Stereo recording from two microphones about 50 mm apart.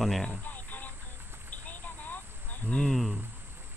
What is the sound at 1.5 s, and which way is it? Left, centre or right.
Vehicle, left.